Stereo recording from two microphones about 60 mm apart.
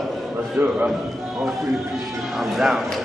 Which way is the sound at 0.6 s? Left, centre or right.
Right.